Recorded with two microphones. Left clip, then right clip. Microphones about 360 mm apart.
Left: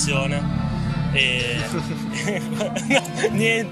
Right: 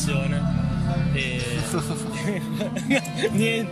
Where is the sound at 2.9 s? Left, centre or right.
Centre.